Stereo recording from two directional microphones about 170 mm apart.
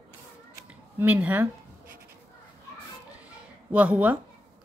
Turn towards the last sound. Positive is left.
turn(degrees=-10)  # may be behind; listen again after turning